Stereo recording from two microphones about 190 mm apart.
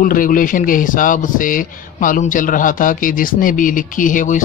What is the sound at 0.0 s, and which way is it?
A man's voice, 45° left (ahead or behind).